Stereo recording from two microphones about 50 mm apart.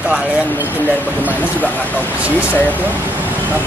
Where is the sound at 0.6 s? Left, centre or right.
Right.